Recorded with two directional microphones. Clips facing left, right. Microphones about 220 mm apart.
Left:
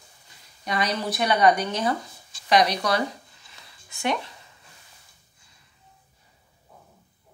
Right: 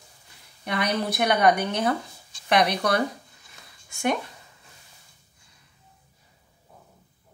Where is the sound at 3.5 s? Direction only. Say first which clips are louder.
Left 1 dB; 50° right (ahead or behind).